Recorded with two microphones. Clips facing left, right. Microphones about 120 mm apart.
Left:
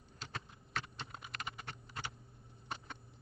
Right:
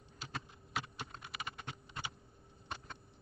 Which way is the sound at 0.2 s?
10° right (ahead or behind).